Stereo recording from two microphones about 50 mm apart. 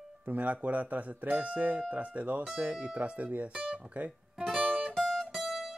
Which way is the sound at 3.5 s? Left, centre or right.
Right.